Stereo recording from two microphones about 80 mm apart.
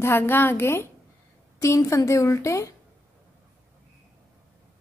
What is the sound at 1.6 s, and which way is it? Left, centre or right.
A woman's voice, left.